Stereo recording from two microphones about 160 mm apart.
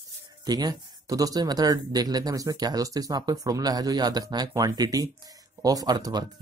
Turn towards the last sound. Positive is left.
turn(degrees=-25)  # may be behind; listen again after turning